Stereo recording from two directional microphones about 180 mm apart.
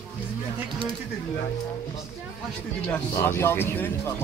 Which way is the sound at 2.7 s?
5° left (ahead or behind).